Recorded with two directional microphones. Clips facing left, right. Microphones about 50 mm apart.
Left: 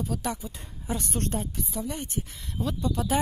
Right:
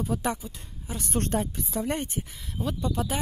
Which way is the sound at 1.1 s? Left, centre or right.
Right.